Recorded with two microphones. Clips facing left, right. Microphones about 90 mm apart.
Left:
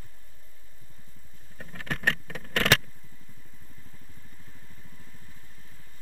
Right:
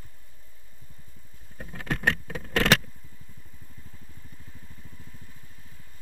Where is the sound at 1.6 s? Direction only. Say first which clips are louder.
Right 3 dB; 30° right (ahead or behind).